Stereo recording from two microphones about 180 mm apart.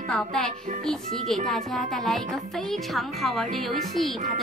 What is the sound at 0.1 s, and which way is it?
Speech, 5° left (ahead or behind).